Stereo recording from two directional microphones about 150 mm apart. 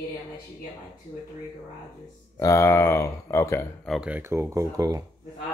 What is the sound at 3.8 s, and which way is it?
Speech, centre (ahead or behind).